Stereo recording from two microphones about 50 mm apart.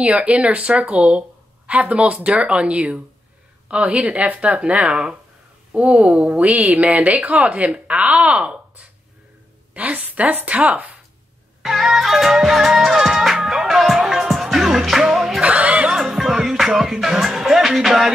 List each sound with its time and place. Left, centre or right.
0.0 s a woman's voice: right
11.6 s music: centre
15.4 s snicker: right
16.1 s music: centre